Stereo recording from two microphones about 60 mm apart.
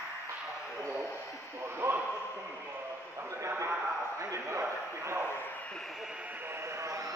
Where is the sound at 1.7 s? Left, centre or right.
Right.